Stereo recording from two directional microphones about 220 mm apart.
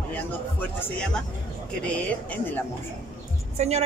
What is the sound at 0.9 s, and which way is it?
Speech, 5° left (ahead or behind).